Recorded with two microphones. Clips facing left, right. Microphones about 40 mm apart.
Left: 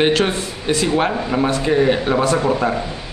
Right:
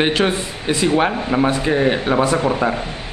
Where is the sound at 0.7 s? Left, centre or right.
Centre.